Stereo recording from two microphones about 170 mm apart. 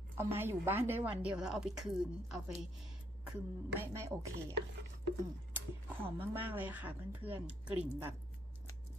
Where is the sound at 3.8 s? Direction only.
15° right (ahead or behind).